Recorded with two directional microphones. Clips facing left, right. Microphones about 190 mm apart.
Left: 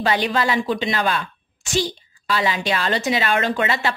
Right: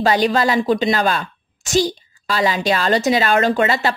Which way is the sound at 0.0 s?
40° right (ahead or behind).